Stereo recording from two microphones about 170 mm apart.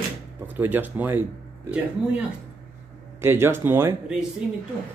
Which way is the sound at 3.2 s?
15° right (ahead or behind).